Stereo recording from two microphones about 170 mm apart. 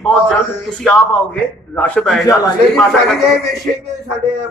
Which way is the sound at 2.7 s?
Centre (ahead or behind).